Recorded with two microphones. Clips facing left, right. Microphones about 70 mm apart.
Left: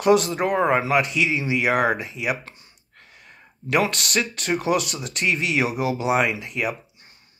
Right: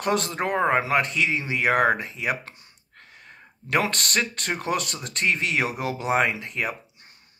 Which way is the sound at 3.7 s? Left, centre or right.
Right.